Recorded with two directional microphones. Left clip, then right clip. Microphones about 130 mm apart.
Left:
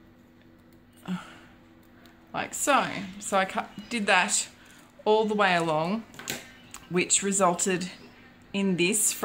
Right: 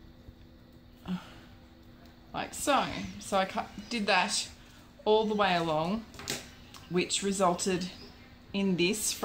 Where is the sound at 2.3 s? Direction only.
Centre (ahead or behind).